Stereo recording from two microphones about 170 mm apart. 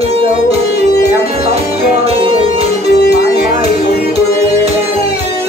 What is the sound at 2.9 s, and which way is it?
Music, 75° left (ahead or behind).